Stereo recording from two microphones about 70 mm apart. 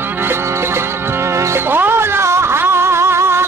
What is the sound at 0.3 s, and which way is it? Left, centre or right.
Music, right.